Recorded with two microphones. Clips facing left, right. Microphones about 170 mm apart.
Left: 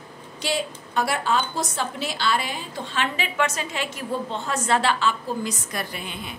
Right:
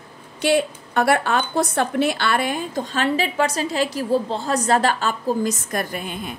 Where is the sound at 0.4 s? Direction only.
60° right (ahead or behind).